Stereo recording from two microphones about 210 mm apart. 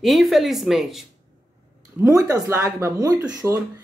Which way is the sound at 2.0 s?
15° right (ahead or behind).